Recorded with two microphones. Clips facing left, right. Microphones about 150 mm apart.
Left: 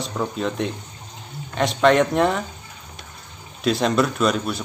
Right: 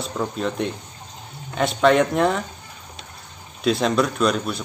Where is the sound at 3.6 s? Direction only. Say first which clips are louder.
Even; centre (ahead or behind).